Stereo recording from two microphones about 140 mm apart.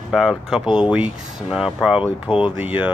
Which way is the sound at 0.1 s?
Centre (ahead or behind).